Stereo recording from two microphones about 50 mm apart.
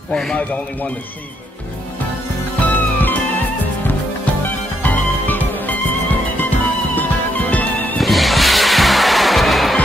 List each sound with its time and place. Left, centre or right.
0.1 s speech: centre
2.6 s music: left
8.0 s music: centre